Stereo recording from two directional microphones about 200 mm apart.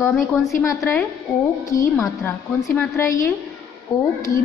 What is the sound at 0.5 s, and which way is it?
A woman's voice, 15° left (ahead or behind).